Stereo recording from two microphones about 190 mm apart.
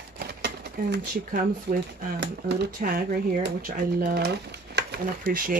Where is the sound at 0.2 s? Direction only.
60° right (ahead or behind).